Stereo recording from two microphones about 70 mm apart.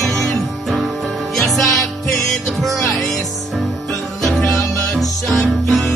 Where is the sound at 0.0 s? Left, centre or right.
Centre.